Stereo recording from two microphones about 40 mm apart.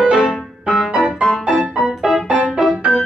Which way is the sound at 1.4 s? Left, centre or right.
Right.